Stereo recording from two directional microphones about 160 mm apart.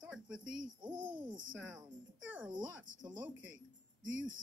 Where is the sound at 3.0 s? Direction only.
10° right (ahead or behind).